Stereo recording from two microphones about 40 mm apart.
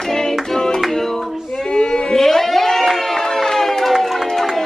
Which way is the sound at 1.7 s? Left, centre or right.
Left.